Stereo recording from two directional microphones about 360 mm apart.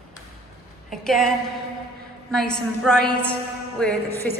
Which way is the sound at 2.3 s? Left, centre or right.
Centre.